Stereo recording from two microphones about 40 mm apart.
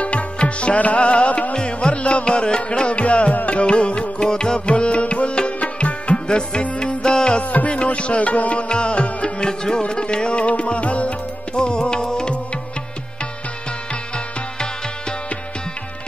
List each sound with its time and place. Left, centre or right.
0.0 s music: left
8.6 s music: left